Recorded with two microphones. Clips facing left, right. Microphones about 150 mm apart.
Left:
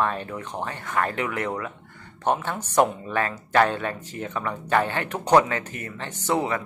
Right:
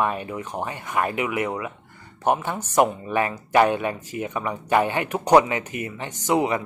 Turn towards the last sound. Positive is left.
turn(degrees=-15)  # may be behind; listen again after turning